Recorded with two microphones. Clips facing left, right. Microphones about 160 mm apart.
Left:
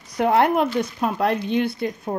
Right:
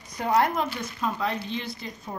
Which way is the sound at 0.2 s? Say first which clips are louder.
Left 6 dB; 65° left (ahead or behind).